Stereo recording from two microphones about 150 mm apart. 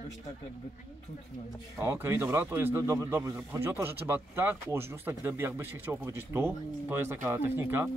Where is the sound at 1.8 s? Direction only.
15° right (ahead or behind).